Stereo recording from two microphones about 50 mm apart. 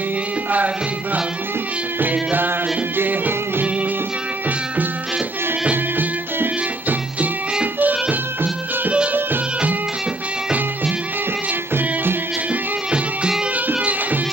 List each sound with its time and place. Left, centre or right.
3.0 s music: right
5.7 s music: right
11.7 s music: right
13.7 s music: right